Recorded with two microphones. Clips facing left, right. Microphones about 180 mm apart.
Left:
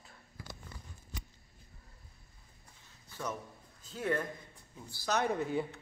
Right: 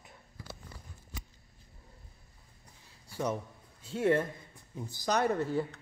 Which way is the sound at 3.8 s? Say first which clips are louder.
Right 6 dB; 30° right (ahead or behind).